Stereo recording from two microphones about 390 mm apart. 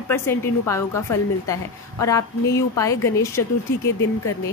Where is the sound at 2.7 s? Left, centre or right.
Centre.